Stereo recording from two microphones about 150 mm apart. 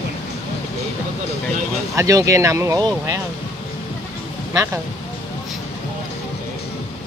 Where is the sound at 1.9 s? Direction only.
20° right (ahead or behind).